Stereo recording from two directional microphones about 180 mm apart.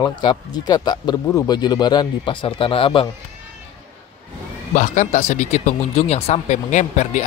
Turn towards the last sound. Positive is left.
turn(degrees=40)  # may be behind; listen again after turning